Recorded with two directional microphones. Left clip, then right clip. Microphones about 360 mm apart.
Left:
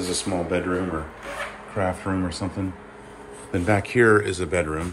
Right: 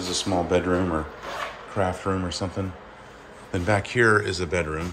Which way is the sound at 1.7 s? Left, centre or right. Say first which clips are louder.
Even; centre.